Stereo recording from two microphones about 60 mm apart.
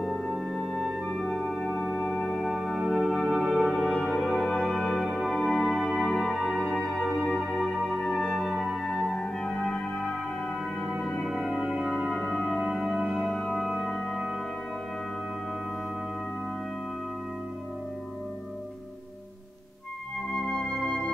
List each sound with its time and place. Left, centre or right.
0.1 s music: centre
2.4 s music: centre
7.2 s music: centre
8.0 s music: centre
8.7 s music: centre
20.3 s music: centre